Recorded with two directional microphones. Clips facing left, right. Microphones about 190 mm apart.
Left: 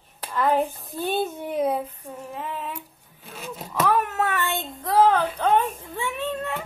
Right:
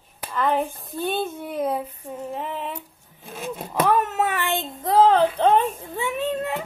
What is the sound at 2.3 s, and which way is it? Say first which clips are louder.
Speech: right 2 dB; 25° right (ahead or behind).